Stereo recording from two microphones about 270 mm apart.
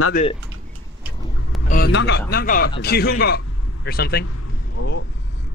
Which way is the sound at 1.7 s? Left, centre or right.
Left.